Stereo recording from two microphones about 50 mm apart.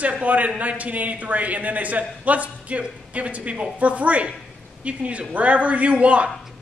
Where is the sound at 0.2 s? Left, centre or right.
Right.